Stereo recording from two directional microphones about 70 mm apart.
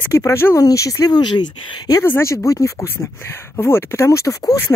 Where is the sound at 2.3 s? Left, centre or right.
Left.